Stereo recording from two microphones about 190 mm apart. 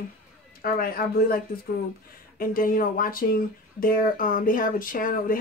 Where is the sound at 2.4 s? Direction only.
50° left (ahead or behind).